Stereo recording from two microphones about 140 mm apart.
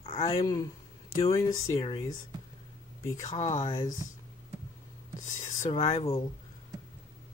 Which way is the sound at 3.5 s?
25° left (ahead or behind).